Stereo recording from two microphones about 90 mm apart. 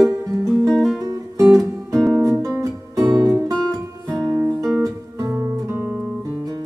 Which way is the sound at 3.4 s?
5° left (ahead or behind).